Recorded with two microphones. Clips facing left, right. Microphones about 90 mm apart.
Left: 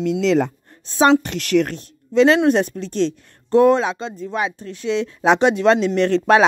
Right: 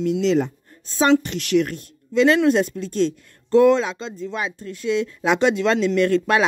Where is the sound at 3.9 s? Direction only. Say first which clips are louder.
Left 3 dB; 20° left (ahead or behind).